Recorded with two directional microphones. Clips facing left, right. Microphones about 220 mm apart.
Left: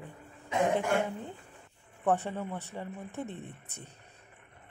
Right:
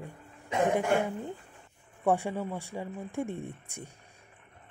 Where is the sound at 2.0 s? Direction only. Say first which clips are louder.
Right 2 dB; 10° right (ahead or behind).